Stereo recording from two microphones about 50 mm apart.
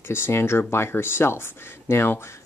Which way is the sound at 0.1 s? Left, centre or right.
Left.